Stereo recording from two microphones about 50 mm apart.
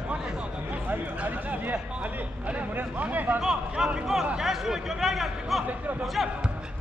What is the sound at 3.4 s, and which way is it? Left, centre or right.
Speech, centre.